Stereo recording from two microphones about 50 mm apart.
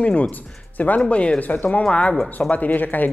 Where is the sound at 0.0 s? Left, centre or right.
Left.